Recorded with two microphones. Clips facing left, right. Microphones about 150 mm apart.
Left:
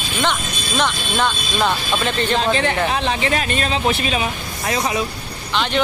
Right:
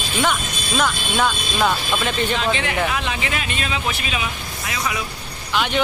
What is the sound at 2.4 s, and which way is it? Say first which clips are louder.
Speech: left 3 dB; 35° left (ahead or behind).